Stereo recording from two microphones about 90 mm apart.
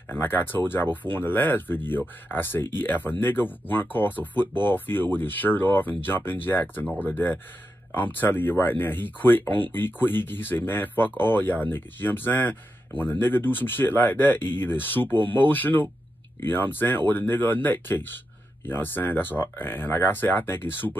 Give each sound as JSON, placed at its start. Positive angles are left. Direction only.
{"t": 0.1, "sound": "speech", "side_deg": 25}